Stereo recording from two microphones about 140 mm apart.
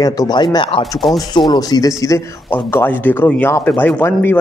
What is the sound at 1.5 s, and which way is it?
Speech, 25° left (ahead or behind).